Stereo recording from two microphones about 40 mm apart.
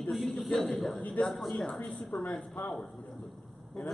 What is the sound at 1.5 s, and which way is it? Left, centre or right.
Speech, left.